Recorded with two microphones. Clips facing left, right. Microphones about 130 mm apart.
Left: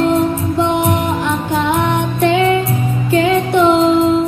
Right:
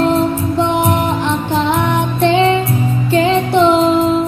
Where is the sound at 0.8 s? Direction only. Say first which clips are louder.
Right 1 dB; 25° right (ahead or behind).